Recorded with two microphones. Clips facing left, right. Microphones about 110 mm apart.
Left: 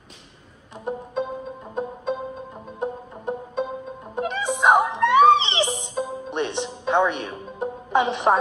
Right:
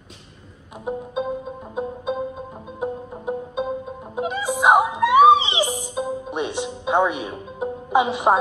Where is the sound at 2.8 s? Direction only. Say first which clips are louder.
Right 1 dB; 5° right (ahead or behind).